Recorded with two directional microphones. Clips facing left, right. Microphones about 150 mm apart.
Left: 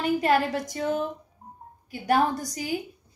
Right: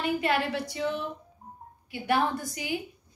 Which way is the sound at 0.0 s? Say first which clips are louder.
Left 4 dB; 40° left (ahead or behind).